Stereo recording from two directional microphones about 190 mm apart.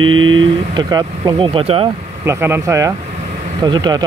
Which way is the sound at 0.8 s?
20° right (ahead or behind).